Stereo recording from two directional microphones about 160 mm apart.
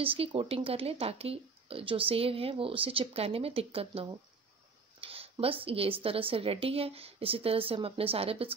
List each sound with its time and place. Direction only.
0.0 s speech: 35° right (ahead or behind)